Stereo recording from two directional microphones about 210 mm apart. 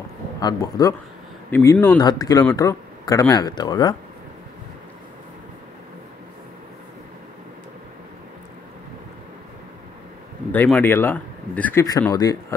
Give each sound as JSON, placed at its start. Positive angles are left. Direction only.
{"t": 0.4, "sound": "speech", "side_deg": 20}
{"t": 10.5, "sound": "speech", "side_deg": 10}